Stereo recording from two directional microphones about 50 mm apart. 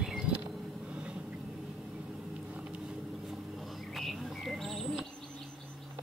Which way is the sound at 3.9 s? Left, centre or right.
Centre.